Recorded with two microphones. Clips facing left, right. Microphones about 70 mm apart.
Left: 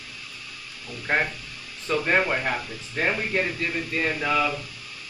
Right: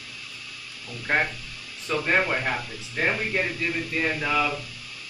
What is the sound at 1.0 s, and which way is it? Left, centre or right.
Speech, centre.